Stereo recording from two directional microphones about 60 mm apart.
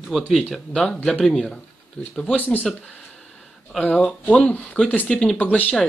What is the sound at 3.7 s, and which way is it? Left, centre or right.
Speech, centre.